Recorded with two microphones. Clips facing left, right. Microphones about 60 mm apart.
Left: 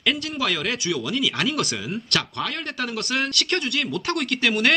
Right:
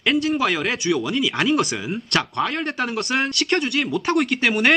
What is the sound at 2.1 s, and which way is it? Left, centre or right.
Speech, right.